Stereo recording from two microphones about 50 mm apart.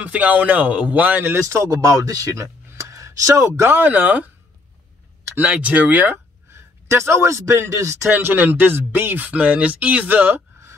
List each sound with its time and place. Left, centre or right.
0.0 s speech: right
1.3 s speech: right
3.7 s speech: right
5.4 s speech: right
6.5 s a man's voice: right
8.1 s speech: right